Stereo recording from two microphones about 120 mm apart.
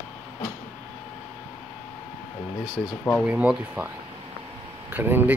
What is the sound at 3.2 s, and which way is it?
Speech, 10° right (ahead or behind).